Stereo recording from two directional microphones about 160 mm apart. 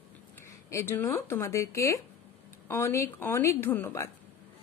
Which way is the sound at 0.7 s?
15° left (ahead or behind).